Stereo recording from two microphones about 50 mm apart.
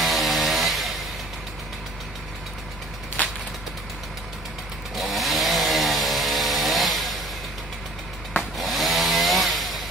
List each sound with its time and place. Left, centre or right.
0.0 s chainsaw: centre
3.2 s a sound: left
4.9 s chainsaw: centre
8.4 s chainsaw: centre